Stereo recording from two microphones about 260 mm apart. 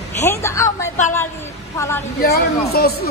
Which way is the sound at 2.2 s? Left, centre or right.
Left.